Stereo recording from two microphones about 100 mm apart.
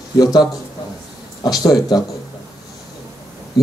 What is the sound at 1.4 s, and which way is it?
Speech, 40° left (ahead or behind).